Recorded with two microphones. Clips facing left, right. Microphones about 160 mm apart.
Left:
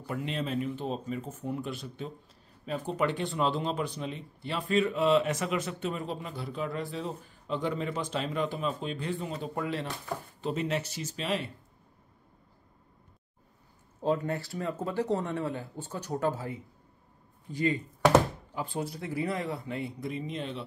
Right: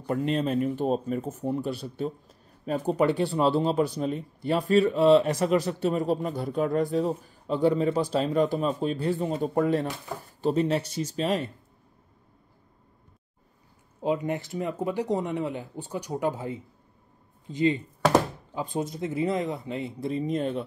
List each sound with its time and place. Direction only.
0.0 s speech: 40° right (ahead or behind)
10.4 s speech: 35° right (ahead or behind)
14.0 s speech: 15° right (ahead or behind); by 20.6 s 50° right (ahead or behind)